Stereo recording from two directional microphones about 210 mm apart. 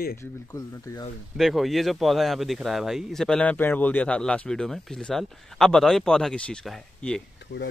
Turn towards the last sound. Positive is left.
turn(degrees=0)  # may be behind; listen again after turning